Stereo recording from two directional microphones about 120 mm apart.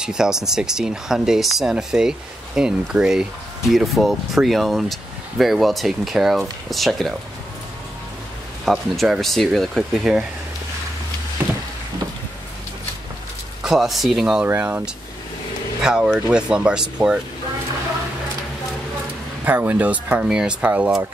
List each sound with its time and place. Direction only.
0.0 s speech: 5° right (ahead or behind)
8.6 s speech: centre (ahead or behind)
13.6 s speech: 5° right (ahead or behind)
14.4 s speech: 15° right (ahead or behind)
19.4 s speech: 15° right (ahead or behind)